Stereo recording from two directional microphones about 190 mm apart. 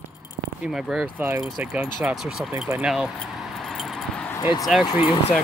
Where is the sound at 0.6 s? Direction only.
5° right (ahead or behind).